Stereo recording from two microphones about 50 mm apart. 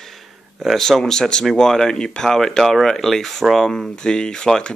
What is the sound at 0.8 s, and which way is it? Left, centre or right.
Speech, centre.